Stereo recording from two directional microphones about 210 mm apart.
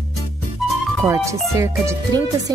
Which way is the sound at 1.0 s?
15° right (ahead or behind).